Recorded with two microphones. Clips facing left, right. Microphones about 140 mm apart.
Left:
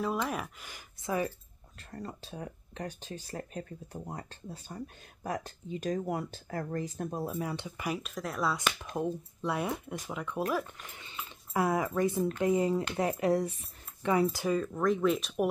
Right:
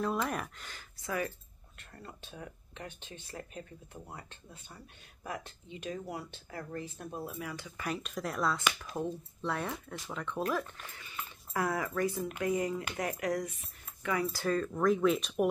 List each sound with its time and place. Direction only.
0.0 s speech: 5° left (ahead or behind)
1.0 s speech: 25° left (ahead or behind)
1.8 s speech: 40° left (ahead or behind); by 7.8 s 25° left (ahead or behind)
7.8 s speech: 5° left (ahead or behind)
8.9 s speech: 15° left (ahead or behind); by 13.6 s 30° left (ahead or behind)
14.3 s speech: 10° left (ahead or behind)